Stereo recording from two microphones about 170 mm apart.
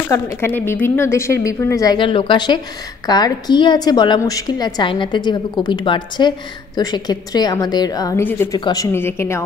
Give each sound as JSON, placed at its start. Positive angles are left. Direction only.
{"t": 0.1, "sound": "a woman's voice", "side_deg": 15}
{"t": 8.5, "sound": "a woman's voice", "side_deg": 25}
{"t": 8.9, "sound": "a woman's voice", "side_deg": 15}